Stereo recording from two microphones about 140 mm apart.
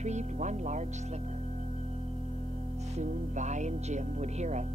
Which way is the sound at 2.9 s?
55° right (ahead or behind).